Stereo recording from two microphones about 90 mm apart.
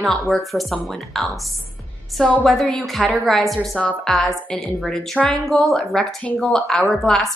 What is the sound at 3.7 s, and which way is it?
A woman's voice, 15° left (ahead or behind).